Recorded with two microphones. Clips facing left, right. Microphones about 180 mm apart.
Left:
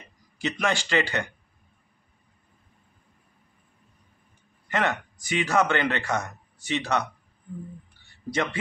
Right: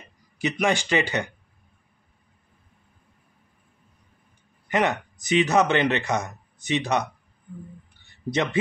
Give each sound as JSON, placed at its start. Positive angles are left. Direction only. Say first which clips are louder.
{"t": 0.4, "sound": "speech", "louder": "right 3 dB", "side_deg": -15}
{"t": 4.6, "sound": "speech", "louder": "right 3 dB", "side_deg": -15}
{"t": 8.3, "sound": "speech", "louder": "right 2 dB", "side_deg": -20}